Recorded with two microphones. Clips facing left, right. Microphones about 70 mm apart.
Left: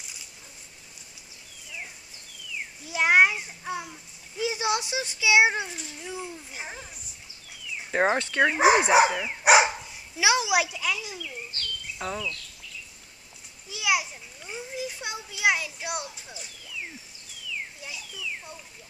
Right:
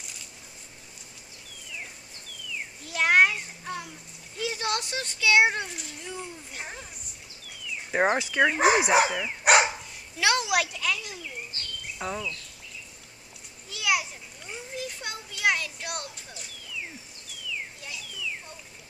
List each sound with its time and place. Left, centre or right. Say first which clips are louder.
2.8 s a child's voice: left 1 dB; centre
7.4 s a sound: even; centre
8.0 s a child's voice: even; centre
11.1 s bird: left 1 dB; centre
12.0 s speech: even; centre
13.7 s children playing: left 1 dB; centre
17.8 s a sound: right 1 dB; centre